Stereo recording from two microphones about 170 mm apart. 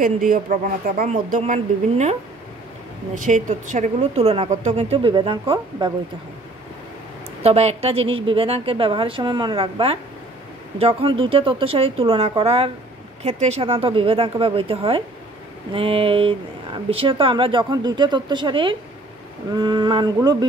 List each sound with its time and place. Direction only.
0.0 s speech: 55° right (ahead or behind)
3.2 s a woman's voice: 50° right (ahead or behind); by 5.9 s 30° right (ahead or behind)
7.4 s a woman's voice: 40° right (ahead or behind); by 20.4 s 20° right (ahead or behind)